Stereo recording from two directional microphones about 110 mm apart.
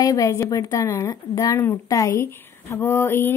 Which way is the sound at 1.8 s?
30° left (ahead or behind).